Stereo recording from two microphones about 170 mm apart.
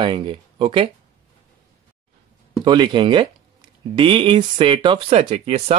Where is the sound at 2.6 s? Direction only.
25° right (ahead or behind).